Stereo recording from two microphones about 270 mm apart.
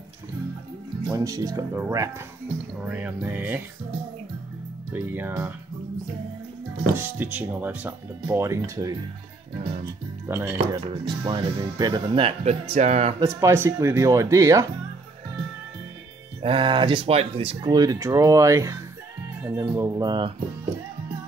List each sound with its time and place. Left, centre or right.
1.1 s speech: centre
4.9 s speech: centre
7.0 s speech: centre
10.2 s speech: centre; by 13.1 s right
13.2 s speech: centre
16.3 s speech: centre